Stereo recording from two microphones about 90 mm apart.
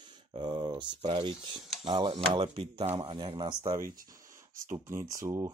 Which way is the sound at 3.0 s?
85° right.